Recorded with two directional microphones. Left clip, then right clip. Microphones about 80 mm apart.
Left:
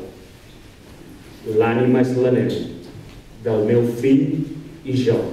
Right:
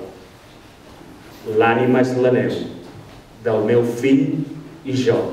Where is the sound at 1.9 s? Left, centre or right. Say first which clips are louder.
Right 1 dB; right.